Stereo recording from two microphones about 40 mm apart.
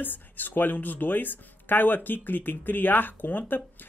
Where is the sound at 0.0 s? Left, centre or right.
Left.